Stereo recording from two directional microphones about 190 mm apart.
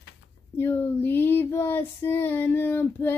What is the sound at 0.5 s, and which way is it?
Child singing, 10° left (ahead or behind).